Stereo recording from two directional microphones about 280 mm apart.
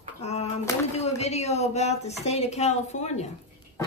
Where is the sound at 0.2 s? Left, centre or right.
Left.